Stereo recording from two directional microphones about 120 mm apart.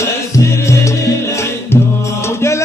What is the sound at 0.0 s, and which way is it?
Music, 25° left (ahead or behind).